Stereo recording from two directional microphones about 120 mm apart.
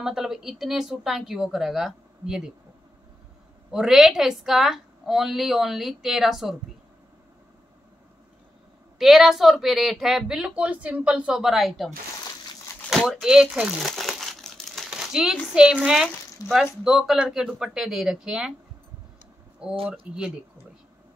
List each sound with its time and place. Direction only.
0.0 s speech: 5° right (ahead or behind)
3.7 s speech: 5° right (ahead or behind)
8.9 s speech: centre (ahead or behind)
12.9 s crumpling: centre (ahead or behind)
15.5 s speech: 5° right (ahead or behind)
16.4 s speech: 30° left (ahead or behind)
16.8 s speech: centre (ahead or behind)
19.9 s speech: 10° right (ahead or behind)